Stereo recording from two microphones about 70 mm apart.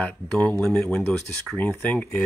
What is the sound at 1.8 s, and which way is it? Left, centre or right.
Speech, left.